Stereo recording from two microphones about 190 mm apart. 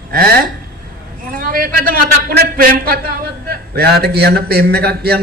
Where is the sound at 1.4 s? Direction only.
45° right (ahead or behind).